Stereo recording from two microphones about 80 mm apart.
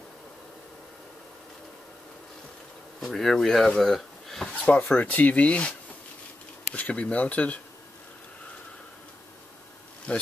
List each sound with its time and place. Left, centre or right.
3.0 s speech: centre
4.7 s speech: left
10.1 s insect: centre